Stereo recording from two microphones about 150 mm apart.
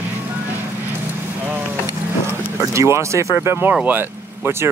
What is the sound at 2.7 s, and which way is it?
Speech, 20° right (ahead or behind).